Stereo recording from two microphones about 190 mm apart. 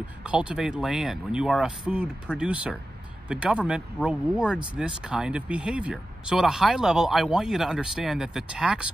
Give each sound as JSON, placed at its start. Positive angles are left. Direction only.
{"t": 0.2, "sound": "speech", "side_deg": -5}